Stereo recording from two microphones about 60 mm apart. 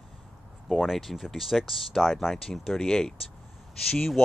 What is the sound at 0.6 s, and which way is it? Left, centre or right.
Speech, centre.